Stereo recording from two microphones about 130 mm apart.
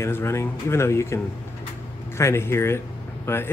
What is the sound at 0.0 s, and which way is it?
Speech, 20° left (ahead or behind).